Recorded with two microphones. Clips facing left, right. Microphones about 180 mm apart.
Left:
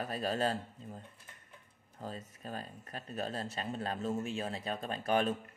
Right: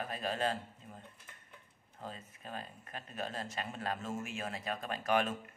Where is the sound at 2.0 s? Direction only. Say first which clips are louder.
Left 3 dB; 40° left (ahead or behind).